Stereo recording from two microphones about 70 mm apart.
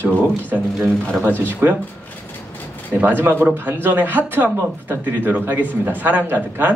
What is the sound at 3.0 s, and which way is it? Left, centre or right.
Speech, right.